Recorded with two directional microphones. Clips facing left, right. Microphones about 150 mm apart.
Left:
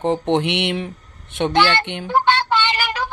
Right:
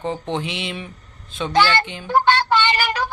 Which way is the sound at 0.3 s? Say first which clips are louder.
Left 7 dB; 75° left (ahead or behind).